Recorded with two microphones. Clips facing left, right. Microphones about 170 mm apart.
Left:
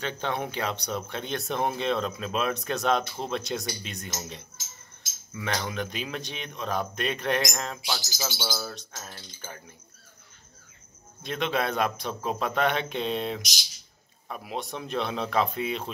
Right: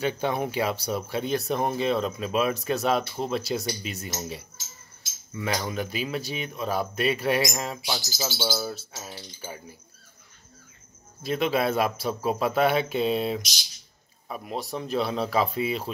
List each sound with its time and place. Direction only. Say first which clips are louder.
0.0 s speech: right 4 dB; 10° right (ahead or behind)
7.8 s bird: right 2 dB; 20° right (ahead or behind)
8.5 s keys jangling: right 5 dB; 5° right (ahead or behind)
11.2 s speech: right 4 dB; 5° right (ahead or behind)